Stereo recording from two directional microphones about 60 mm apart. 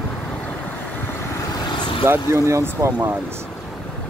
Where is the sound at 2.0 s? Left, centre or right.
Right.